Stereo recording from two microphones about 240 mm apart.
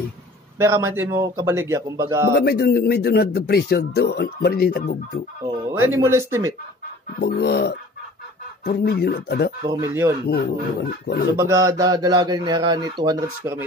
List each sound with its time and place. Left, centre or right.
0.6 s speech: centre
2.3 s speech: left
5.7 s speech: centre
7.2 s speech: left
9.6 s speech: centre
10.2 s speech: left
11.3 s speech: centre